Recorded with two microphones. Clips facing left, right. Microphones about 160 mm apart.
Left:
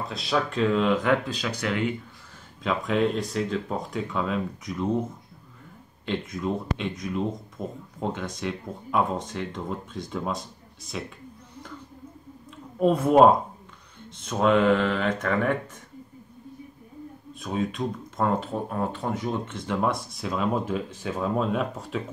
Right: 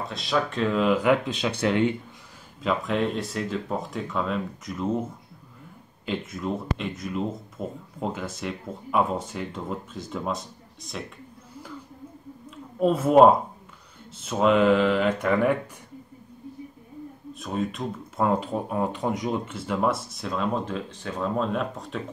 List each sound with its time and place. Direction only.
0.1 s speech: centre (ahead or behind)
1.3 s speech: 25° right (ahead or behind)
2.6 s speech: centre (ahead or behind)
6.0 s speech: 5° right (ahead or behind)
12.7 s speech: centre (ahead or behind)
17.3 s speech: centre (ahead or behind)